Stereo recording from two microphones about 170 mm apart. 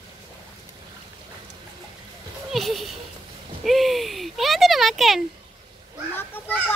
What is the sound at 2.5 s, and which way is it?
Speech, centre (ahead or behind).